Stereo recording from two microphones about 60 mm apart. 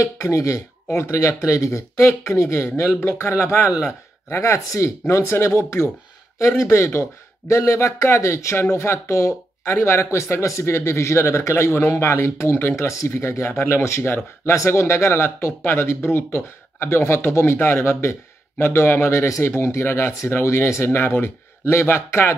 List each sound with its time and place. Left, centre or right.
0.0 s speech: left